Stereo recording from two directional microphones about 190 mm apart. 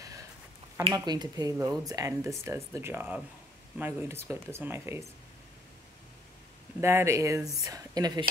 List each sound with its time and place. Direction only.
0.9 s speech: 20° right (ahead or behind)
6.8 s speech: 10° right (ahead or behind)